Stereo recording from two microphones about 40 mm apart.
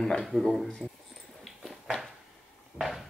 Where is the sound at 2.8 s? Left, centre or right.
Centre.